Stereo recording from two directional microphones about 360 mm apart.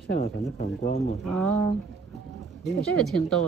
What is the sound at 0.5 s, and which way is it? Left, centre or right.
Speech, left.